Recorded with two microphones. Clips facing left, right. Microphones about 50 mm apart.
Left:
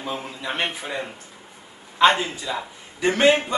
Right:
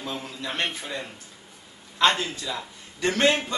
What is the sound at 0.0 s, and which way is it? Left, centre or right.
A man's voice, centre.